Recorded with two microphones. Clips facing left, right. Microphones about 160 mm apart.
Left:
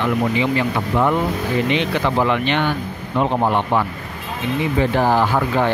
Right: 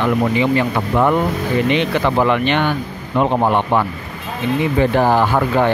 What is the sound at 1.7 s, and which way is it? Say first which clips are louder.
Speech: right 3 dB; 55° right (ahead or behind).